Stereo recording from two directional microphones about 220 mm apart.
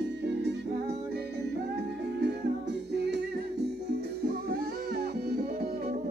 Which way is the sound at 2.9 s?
50° right (ahead or behind).